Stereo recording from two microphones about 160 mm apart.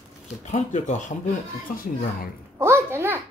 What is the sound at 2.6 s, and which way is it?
Speech, 15° right (ahead or behind).